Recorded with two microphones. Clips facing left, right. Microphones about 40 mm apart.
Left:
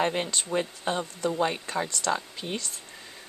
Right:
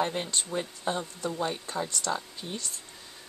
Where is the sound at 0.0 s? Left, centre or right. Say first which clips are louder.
Left 3 dB; left.